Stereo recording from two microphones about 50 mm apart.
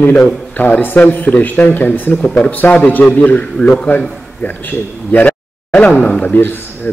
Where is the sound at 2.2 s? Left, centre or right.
Centre.